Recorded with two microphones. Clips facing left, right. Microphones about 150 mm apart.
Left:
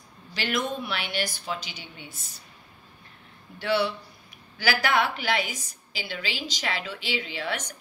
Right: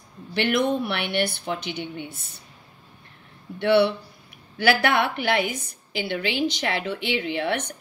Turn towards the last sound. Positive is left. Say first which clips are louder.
# right 7 dB
turn(degrees=-55)  # may be behind; listen again after turning